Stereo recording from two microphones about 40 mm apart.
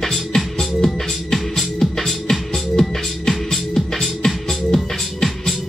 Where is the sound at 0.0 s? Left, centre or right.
Centre.